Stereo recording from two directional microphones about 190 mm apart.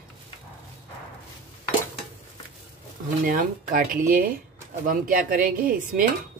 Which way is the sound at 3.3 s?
45° right (ahead or behind).